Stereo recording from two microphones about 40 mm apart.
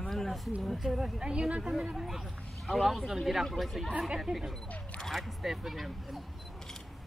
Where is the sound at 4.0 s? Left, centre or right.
Centre.